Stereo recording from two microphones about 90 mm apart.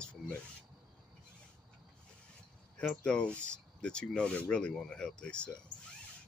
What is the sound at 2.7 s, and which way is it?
Speech, 10° left (ahead or behind).